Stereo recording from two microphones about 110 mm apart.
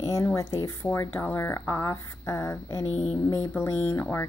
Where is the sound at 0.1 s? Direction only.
30° left (ahead or behind).